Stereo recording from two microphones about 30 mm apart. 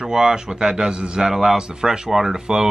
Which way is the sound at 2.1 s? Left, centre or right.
Centre.